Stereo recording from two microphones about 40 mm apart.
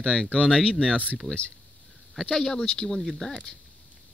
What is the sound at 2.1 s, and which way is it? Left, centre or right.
Speech, centre.